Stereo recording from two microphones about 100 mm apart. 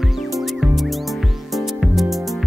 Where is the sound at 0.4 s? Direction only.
Centre (ahead or behind).